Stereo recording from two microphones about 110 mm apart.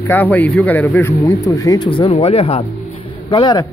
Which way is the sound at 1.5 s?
35° left (ahead or behind).